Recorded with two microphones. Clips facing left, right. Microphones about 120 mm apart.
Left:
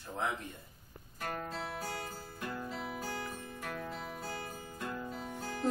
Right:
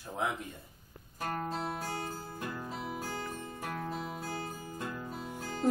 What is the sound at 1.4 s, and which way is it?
Music, 35° right (ahead or behind).